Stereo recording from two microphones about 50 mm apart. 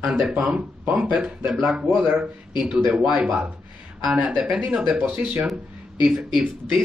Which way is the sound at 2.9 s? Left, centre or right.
Centre.